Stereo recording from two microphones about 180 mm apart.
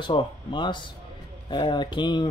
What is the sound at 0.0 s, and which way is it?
Speech, 25° left (ahead or behind).